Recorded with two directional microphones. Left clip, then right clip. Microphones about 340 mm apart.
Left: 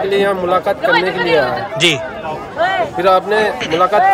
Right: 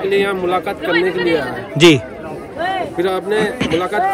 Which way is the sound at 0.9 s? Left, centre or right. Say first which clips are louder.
Right 1 dB; left.